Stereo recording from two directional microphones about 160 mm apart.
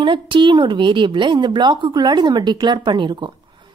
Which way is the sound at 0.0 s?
30° right (ahead or behind).